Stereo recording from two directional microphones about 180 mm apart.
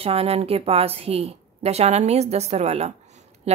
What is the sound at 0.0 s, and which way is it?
Speech, 35° right (ahead or behind).